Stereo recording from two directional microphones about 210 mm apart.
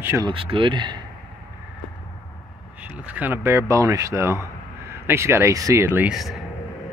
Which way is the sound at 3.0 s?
10° right (ahead or behind).